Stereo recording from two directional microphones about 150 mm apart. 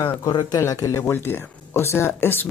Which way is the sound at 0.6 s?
20° left (ahead or behind).